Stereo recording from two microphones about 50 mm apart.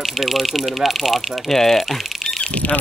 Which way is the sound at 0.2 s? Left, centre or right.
Centre.